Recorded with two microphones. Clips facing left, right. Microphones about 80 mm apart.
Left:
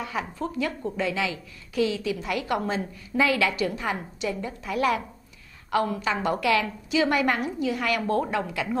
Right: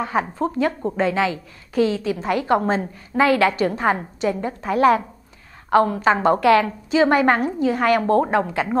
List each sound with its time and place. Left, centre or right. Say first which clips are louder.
0.0 s a woman's voice: right 8 dB; right